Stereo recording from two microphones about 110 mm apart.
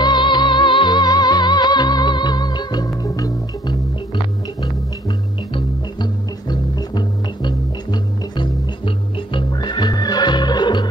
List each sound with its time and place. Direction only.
0.0 s music: 45° left (ahead or behind)
6.5 s music: 40° left (ahead or behind)